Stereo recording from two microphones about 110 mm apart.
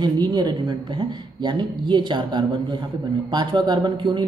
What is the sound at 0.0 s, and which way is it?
A woman's voice, 40° right (ahead or behind).